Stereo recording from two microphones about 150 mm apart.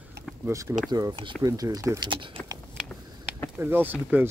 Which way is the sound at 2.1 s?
35° right (ahead or behind).